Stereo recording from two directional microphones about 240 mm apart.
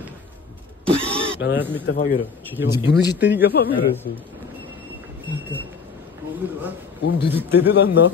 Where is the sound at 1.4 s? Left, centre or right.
Left.